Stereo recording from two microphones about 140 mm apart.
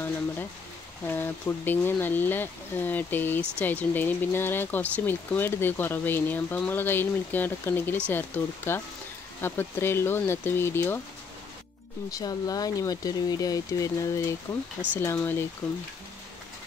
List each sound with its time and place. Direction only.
1.0 s speech: 15° left (ahead or behind)
12.1 s speech: 25° left (ahead or behind)